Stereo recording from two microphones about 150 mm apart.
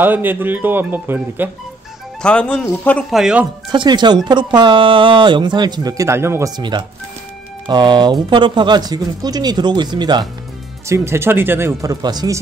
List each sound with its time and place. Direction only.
0.0 s speech: 15° right (ahead or behind)
2.2 s a man's voice: 10° left (ahead or behind)
3.1 s speech: 5° right (ahead or behind)
3.7 s speech: 30° right (ahead or behind)
10.9 s speech: 15° right (ahead or behind)